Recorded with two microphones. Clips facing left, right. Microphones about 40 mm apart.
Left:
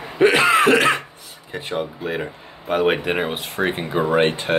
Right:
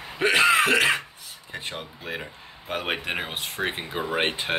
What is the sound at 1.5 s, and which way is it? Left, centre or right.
Speech, centre.